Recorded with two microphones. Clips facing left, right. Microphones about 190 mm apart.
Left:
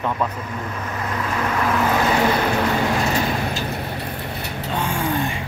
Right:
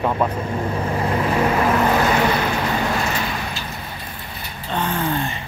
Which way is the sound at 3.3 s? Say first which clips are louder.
Left 4 dB; 40° left (ahead or behind).